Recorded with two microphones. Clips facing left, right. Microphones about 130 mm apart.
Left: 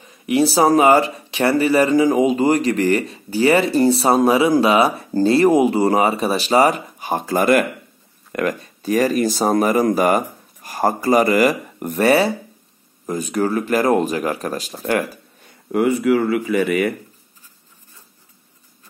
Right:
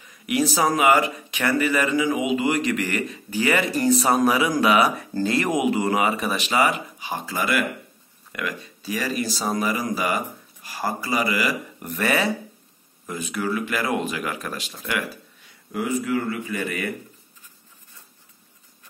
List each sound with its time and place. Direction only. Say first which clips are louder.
0.0 s speech: left 6 dB; 30° left (ahead or behind); by 16.9 s 65° left (ahead or behind)